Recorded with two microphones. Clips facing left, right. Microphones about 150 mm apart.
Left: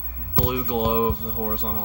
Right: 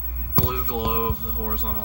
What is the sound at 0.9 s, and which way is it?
Speech, 35° left (ahead or behind).